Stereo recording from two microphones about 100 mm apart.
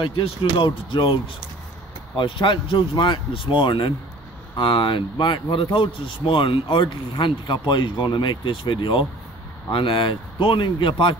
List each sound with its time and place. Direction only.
0.0 s speech: 60° left (ahead or behind)